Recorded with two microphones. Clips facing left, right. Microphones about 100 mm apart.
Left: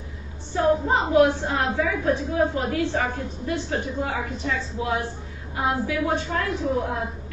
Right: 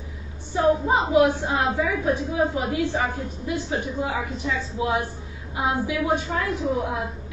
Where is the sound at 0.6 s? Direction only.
15° right (ahead or behind).